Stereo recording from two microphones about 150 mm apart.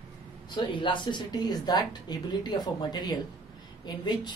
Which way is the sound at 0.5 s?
30° left (ahead or behind).